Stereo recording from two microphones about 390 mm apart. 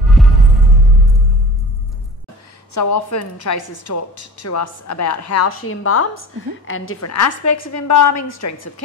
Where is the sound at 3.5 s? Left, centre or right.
Left.